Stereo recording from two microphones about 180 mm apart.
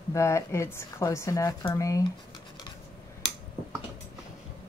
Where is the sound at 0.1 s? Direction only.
15° left (ahead or behind).